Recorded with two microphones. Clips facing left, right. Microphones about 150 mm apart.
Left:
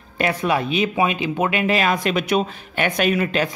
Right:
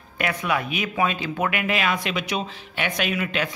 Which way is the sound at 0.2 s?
30° left (ahead or behind).